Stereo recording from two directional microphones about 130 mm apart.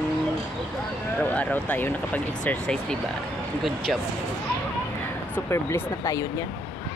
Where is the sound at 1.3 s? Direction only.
15° left (ahead or behind).